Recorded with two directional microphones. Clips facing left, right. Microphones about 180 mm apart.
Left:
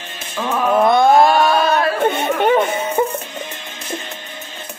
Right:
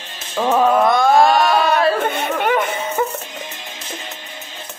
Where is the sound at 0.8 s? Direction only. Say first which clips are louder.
Left 2 dB; 25° left (ahead or behind).